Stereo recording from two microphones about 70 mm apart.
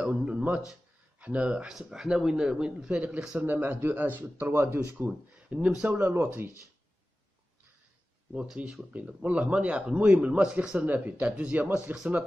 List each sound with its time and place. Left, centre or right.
0.0 s speech: centre
1.7 s speech: centre
3.5 s speech: right
4.9 s speech: right
8.3 s speech: centre
10.9 s speech: right